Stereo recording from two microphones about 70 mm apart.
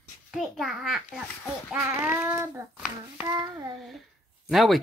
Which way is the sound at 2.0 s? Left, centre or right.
Right.